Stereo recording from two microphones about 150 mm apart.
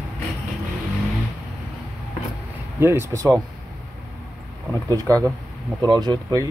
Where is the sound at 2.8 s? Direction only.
15° right (ahead or behind).